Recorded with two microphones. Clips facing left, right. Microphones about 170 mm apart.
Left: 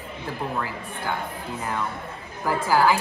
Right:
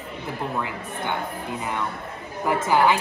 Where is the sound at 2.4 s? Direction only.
20° right (ahead or behind).